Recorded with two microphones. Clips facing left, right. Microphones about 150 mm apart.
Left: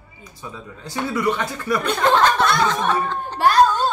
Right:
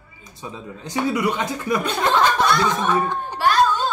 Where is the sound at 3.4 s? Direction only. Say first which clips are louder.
Left 3 dB; 40° left (ahead or behind).